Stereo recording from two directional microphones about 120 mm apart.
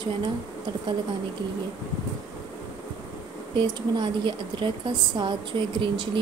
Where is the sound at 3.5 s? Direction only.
40° right (ahead or behind).